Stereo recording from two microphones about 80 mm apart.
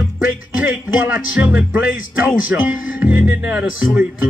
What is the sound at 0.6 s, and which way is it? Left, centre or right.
Speech, centre.